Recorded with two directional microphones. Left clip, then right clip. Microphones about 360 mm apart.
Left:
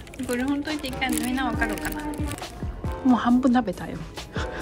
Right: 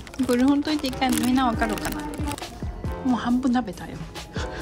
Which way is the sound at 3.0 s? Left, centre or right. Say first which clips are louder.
Left 3 dB; centre.